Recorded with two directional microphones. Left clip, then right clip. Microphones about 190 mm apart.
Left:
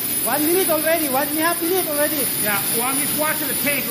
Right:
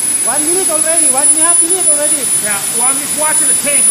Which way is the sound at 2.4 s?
40° right (ahead or behind).